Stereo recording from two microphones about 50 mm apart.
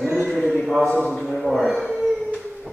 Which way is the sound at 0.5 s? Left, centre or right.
Centre.